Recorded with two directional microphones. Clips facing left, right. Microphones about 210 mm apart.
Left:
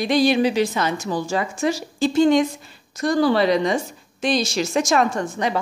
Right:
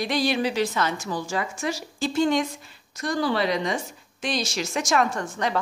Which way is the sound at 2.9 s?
35° left (ahead or behind).